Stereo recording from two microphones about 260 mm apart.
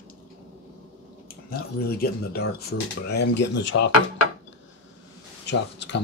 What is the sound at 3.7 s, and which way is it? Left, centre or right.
Dishes, left.